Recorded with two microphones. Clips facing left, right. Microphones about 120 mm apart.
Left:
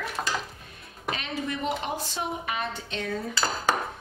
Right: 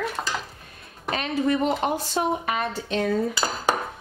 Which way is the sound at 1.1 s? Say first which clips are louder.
Right 8 dB; 50° right (ahead or behind).